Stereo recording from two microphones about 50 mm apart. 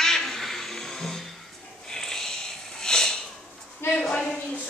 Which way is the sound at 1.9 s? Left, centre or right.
Centre.